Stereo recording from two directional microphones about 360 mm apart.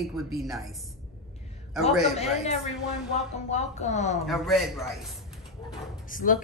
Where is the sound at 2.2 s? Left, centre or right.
Centre.